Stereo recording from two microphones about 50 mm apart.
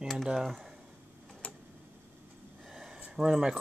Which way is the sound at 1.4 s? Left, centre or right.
Left.